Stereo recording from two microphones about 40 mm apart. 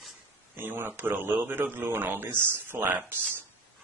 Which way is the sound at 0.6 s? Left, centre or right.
Right.